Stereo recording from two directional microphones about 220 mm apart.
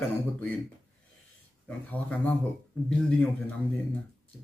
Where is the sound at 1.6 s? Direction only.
5° left (ahead or behind).